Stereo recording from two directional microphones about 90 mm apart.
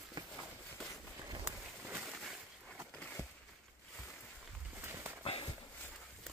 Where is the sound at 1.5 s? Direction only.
20° right (ahead or behind).